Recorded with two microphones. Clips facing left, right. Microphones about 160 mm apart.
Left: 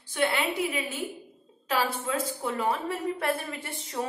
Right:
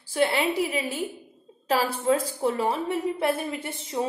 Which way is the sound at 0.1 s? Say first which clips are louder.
Right 4 dB; 30° right (ahead or behind).